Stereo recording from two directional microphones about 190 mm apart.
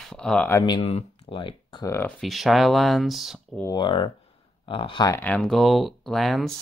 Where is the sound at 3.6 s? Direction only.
25° left (ahead or behind).